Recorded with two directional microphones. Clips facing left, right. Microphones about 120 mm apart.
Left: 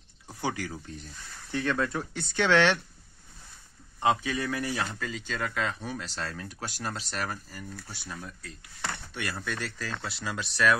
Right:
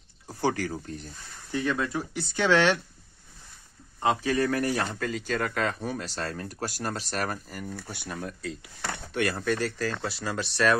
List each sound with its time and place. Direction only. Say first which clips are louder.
0.3 s speech: right 5 dB; 40° right (ahead or behind)
1.5 s speech: right 1 dB; 20° right (ahead or behind)
1.8 s speech: even; 5° right (ahead or behind)
2.3 s speech: right 1 dB; 15° right (ahead or behind)
4.2 s speech: right 6 dB; 45° right (ahead or behind); by 8.5 s 80° right
9.1 s speech: right 12 dB; 50° right (ahead or behind)